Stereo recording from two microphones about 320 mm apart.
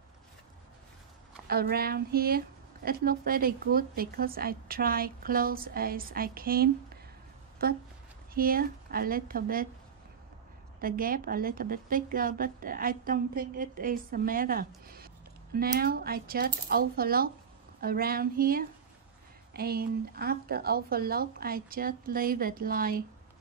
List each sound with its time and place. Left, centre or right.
1.5 s speech: right
10.8 s speech: right